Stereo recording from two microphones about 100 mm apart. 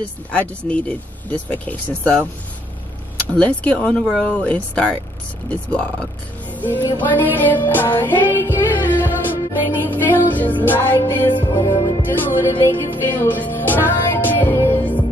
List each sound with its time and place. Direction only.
0.7 s speech: 15° left (ahead or behind)
3.3 s speech: 15° left (ahead or behind)
6.8 s music: 25° left (ahead or behind)
11.4 s music: 40° left (ahead or behind)
12.1 s music: 25° left (ahead or behind)
13.0 s speech: 20° left (ahead or behind)
13.8 s music: 20° left (ahead or behind)